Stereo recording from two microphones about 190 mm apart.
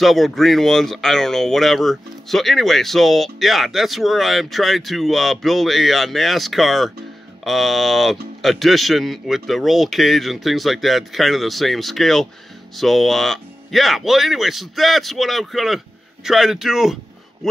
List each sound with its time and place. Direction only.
0.0 s speech: centre (ahead or behind)